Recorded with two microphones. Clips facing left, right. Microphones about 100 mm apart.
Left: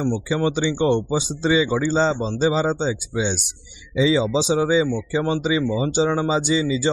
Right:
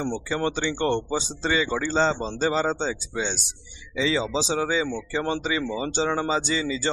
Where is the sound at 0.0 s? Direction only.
Centre (ahead or behind).